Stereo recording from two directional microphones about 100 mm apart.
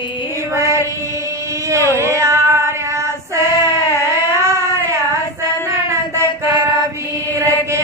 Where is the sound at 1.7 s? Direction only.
30° right (ahead or behind).